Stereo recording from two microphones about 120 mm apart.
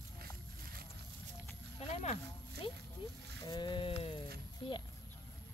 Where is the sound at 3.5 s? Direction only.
40° left (ahead or behind).